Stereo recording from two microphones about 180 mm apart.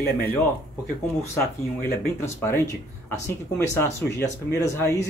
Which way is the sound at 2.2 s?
15° left (ahead or behind).